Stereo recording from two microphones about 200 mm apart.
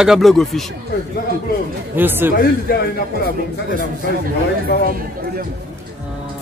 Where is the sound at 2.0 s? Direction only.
10° right (ahead or behind).